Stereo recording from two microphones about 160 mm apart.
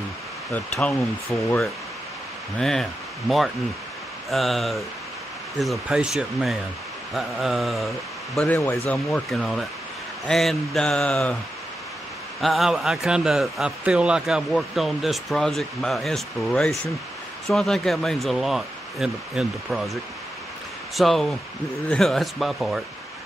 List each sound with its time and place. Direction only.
0.5 s speech: 10° left (ahead or behind)
2.6 s speech: centre (ahead or behind)
8.5 s speech: 15° left (ahead or behind)
8.9 s speech: centre (ahead or behind)
12.4 s speech: centre (ahead or behind)